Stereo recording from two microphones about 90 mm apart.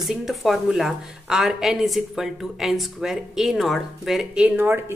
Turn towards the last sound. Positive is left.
turn(degrees=-25)  # may be behind; listen again after turning